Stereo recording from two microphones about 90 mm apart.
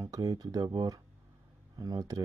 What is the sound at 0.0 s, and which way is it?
Speech, 40° right (ahead or behind).